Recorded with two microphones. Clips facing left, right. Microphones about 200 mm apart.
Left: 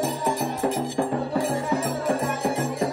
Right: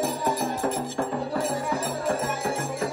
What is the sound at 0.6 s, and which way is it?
Music, 15° left (ahead or behind).